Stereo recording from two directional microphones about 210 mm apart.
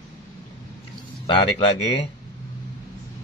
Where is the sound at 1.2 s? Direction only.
25° left (ahead or behind).